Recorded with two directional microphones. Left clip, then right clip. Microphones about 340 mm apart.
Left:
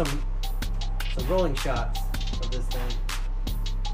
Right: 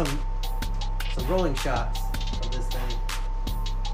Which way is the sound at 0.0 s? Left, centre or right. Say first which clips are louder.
Even; centre.